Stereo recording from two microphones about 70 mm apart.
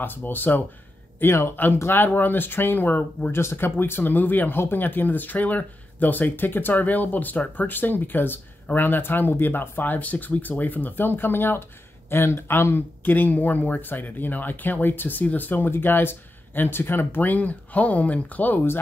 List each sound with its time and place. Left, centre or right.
0.0 s speech: left
1.2 s speech: left